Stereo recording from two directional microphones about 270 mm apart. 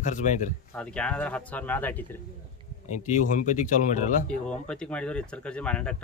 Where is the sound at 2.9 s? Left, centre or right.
Left.